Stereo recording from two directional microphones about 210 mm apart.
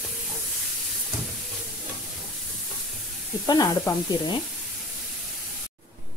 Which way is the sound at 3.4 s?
15° left (ahead or behind).